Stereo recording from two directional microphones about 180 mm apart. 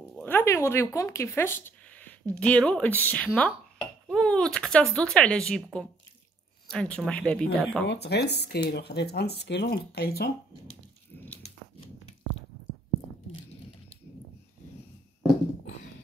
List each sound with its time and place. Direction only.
0.1 s speech: 10° left (ahead or behind)
7.8 s speech: 70° left (ahead or behind)